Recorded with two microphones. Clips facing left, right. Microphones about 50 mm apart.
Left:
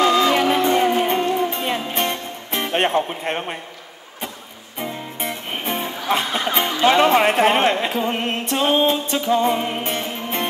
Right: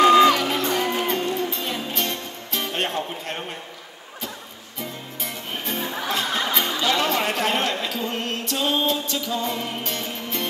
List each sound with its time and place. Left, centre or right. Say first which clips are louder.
0.0 s music: right 3 dB; right
0.3 s music: left 5 dB; left
4.7 s music: left 6 dB; left